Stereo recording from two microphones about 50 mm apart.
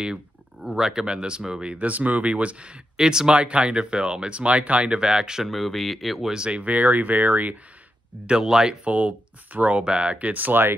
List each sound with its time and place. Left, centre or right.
0.7 s speech: centre
5.5 s speech: centre
6.3 s speech: right
8.3 s speech: centre
8.8 s speech: right
10.1 s speech: right